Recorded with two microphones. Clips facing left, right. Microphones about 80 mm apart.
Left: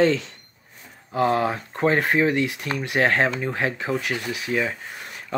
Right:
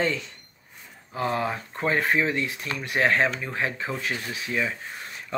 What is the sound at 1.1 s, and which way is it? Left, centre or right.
Speech, left.